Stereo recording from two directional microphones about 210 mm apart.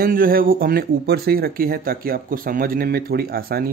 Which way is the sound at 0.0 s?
45° right (ahead or behind).